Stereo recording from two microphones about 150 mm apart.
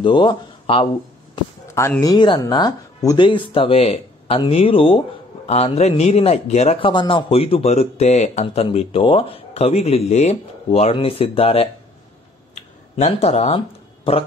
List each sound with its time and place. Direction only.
0.0 s speech: 30° left (ahead or behind)
1.7 s speech: 20° left (ahead or behind); by 8.6 s 50° left (ahead or behind)
8.6 s speech: 35° left (ahead or behind)
12.9 s speech: 45° left (ahead or behind)